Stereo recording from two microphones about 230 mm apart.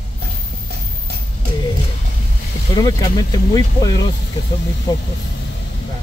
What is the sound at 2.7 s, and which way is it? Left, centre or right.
Speech, centre.